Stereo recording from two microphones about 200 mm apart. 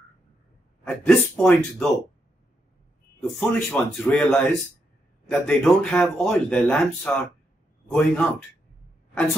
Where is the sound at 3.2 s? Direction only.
Centre (ahead or behind).